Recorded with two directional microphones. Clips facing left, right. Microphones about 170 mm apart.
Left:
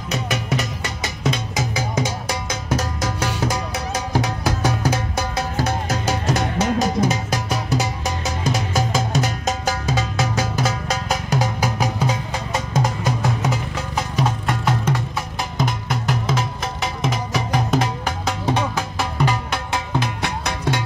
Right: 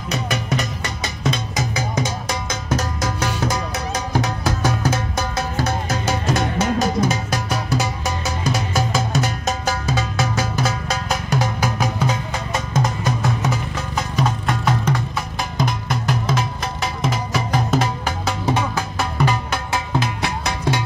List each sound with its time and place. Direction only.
0.1 s music: 5° left (ahead or behind)